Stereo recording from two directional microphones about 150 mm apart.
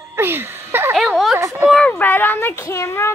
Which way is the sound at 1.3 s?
20° right (ahead or behind).